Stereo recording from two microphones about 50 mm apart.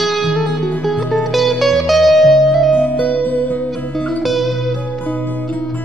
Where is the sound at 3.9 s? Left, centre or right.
Left.